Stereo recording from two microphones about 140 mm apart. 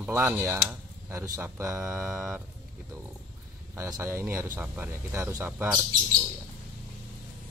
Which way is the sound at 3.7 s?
20° right (ahead or behind).